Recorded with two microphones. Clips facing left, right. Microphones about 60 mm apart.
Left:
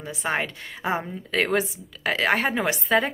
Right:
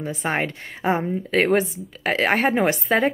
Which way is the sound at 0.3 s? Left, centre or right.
Right.